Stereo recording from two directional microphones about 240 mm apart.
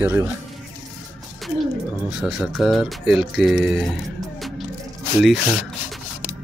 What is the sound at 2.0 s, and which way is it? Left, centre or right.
Speech, centre.